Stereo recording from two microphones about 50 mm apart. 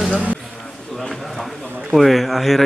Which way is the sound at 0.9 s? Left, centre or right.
Centre.